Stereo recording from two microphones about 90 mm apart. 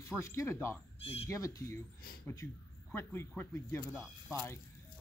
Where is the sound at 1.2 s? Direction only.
35° left (ahead or behind).